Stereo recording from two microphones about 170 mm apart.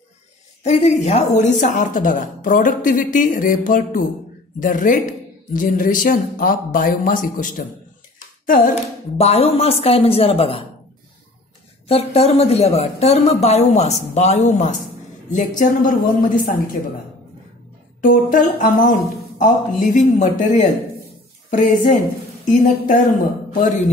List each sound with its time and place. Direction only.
0.7 s a woman's voice: 40° left (ahead or behind)
9.2 s speech: 35° left (ahead or behind)
11.9 s a woman's voice: 35° left (ahead or behind); by 16.5 s 55° left (ahead or behind)
18.0 s a woman's voice: 50° left (ahead or behind)
23.5 s a woman's voice: 50° left (ahead or behind)